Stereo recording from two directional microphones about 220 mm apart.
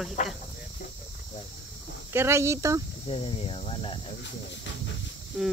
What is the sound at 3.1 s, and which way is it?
Speech, 25° left (ahead or behind).